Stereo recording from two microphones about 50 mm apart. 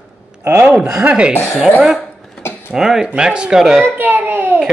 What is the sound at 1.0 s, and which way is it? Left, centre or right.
Speech, right.